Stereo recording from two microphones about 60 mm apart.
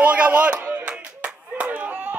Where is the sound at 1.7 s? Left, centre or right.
Right.